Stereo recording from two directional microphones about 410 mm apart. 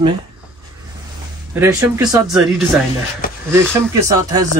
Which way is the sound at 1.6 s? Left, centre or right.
Centre.